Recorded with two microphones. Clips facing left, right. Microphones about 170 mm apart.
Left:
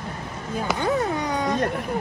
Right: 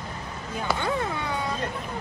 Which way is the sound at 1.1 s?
40° left (ahead or behind).